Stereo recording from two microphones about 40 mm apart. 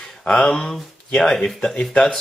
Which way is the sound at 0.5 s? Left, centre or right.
Centre.